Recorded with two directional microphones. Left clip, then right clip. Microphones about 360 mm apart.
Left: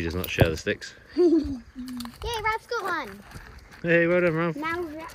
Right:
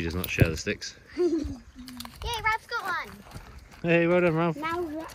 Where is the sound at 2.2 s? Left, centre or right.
Left.